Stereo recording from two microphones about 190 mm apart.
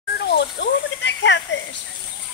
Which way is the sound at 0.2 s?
60° left (ahead or behind).